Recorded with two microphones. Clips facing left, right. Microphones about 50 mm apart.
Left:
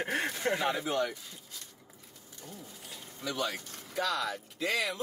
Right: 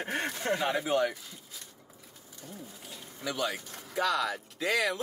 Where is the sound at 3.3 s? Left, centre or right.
Centre.